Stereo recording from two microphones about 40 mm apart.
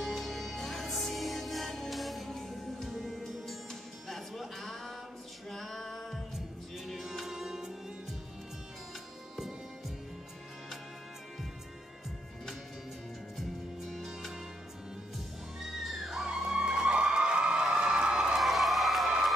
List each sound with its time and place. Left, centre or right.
0.0 s music: centre
13.4 s music: centre
15.6 s music: centre
18.4 s a sound: centre